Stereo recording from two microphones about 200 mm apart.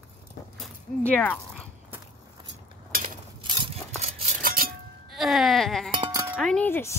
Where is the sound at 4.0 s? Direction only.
35° right (ahead or behind).